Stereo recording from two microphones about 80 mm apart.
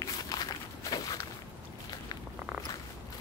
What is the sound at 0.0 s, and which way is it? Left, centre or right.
Walk, left.